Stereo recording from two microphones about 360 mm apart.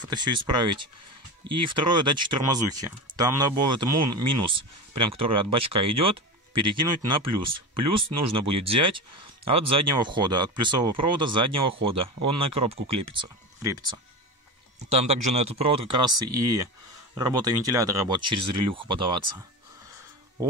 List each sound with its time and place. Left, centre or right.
0.0 s speech: centre